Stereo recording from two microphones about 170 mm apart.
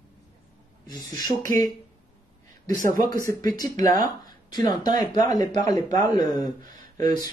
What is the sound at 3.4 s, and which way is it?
Speech, 25° left (ahead or behind).